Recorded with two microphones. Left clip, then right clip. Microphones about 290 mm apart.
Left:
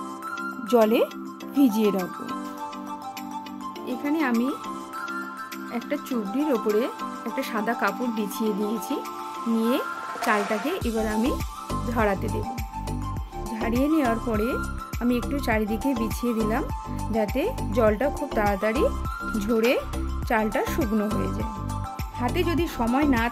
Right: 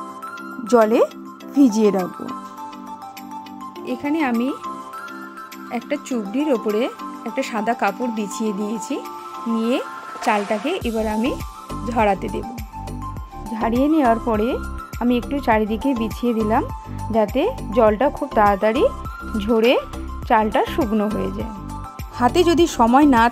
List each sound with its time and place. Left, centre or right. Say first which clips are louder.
0.7 s speech: right 5 dB; centre
3.8 s speech: right 4 dB; centre
5.9 s speech: right 3 dB; centre
13.5 s speech: right 6 dB; centre
22.2 s speech: right 10 dB; right